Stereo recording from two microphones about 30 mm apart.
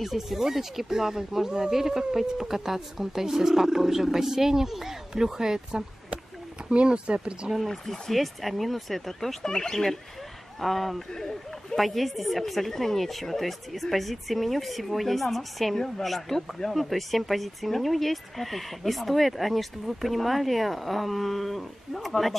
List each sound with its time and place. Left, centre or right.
0.0 s speech: centre
6.9 s speech: right
7.6 s speech: centre
9.4 s speech: left
10.6 s speech: centre
16.7 s speech: centre